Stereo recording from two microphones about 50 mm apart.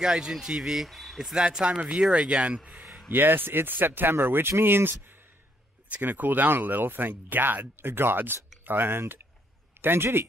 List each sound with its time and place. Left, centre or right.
0.0 s speech: centre
1.3 s speech: centre
3.1 s speech: right
5.9 s a man's voice: right